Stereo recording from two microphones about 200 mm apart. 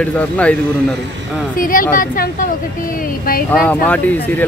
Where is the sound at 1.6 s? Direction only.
45° left (ahead or behind).